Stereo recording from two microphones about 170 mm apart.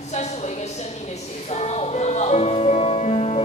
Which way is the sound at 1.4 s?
40° left (ahead or behind).